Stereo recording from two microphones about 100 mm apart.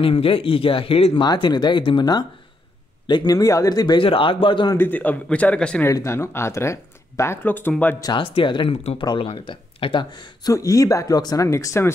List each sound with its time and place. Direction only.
0.0 s speech: 65° left (ahead or behind)
1.2 s speech: 45° left (ahead or behind)
3.3 s speech: 35° left (ahead or behind); by 4.7 s 50° left (ahead or behind)
4.7 s a man's voice: 20° left (ahead or behind)
5.9 s speech: 30° left (ahead or behind)
8.2 s speech: 60° left (ahead or behind)
10.5 s speech: 35° left (ahead or behind)
11.4 s speech: 30° left (ahead or behind)